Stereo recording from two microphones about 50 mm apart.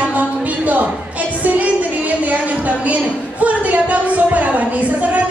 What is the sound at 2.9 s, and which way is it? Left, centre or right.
A woman's voice, right.